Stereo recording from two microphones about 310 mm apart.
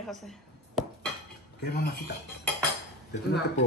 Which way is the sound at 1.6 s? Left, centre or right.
Left.